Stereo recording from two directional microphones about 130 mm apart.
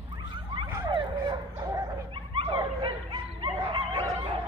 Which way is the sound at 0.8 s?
35° right (ahead or behind).